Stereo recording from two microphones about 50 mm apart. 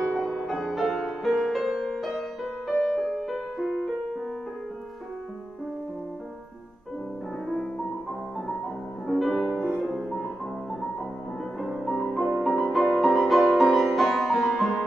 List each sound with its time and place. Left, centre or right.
0.1 s music: centre
7.4 s music: centre
9.0 s music: centre